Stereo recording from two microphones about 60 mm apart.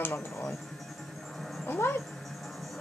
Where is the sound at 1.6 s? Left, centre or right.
Left.